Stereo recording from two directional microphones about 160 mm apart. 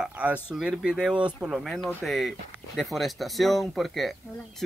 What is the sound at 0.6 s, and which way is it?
Speech, 5° right (ahead or behind).